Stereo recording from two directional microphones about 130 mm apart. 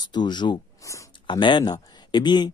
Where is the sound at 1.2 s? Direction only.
35° left (ahead or behind).